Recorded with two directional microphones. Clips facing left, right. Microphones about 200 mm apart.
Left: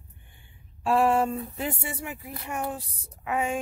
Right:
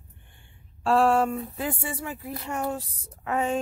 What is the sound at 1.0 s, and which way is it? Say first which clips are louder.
A woman's voice: right 1 dB; 20° left (ahead or behind).